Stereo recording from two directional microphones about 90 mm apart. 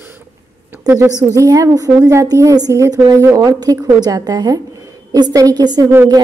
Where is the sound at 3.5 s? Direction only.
50° right (ahead or behind).